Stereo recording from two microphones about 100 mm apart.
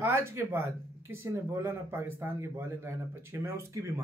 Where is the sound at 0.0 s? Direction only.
25° right (ahead or behind).